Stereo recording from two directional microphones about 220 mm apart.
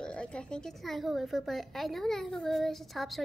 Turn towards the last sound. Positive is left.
turn(degrees=0)  # may be behind; listen again after turning